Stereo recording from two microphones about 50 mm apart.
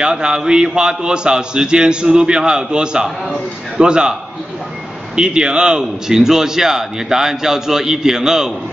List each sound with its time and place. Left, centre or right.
0.0 s a man's voice: centre